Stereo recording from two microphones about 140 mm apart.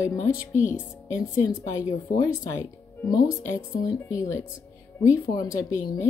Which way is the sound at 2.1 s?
20° left (ahead or behind).